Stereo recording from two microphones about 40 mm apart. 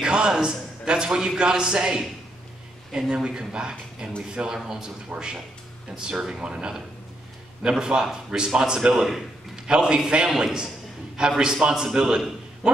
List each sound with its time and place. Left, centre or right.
0.0 s a man's voice: right
4.6 s a man's voice: centre
7.8 s a man's voice: centre